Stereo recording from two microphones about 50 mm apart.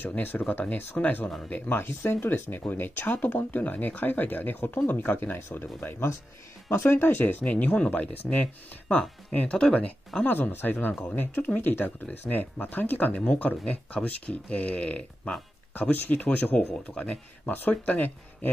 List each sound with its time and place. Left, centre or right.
0.1 s speech: left
2.0 s speech: left
7.4 s speech: left
9.6 s speech: centre
10.2 s speech: left
15.7 s speech: left
17.5 s speech: left